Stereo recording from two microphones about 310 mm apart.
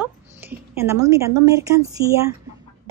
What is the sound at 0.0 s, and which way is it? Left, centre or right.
A woman's voice, centre.